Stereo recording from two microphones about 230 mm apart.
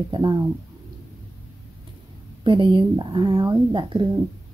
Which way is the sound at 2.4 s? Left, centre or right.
Right.